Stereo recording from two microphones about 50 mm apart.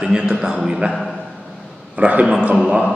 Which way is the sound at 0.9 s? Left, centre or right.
Centre.